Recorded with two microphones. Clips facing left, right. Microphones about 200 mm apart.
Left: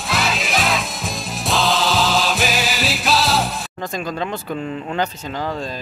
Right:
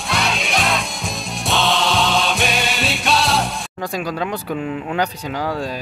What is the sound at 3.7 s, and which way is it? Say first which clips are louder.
Speech: right 2 dB; 10° right (ahead or behind).